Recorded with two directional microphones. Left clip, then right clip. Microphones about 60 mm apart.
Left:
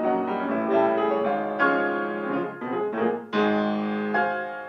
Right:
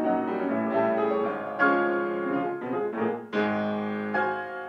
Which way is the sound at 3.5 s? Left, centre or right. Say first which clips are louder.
Left 4 dB; centre.